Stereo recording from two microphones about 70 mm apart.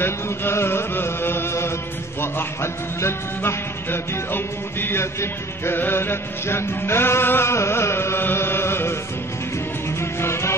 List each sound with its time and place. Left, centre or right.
0.0 s music: left
9.9 s music: left